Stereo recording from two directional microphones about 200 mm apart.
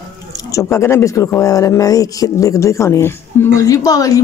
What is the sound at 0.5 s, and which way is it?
Speech, 15° left (ahead or behind).